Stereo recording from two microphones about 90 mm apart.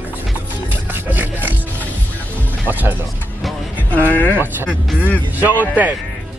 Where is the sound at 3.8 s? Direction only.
20° left (ahead or behind).